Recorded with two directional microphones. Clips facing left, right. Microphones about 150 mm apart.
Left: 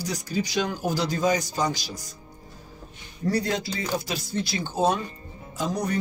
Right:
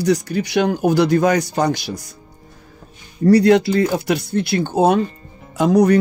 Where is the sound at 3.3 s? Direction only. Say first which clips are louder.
Right 14 dB; 75° right (ahead or behind).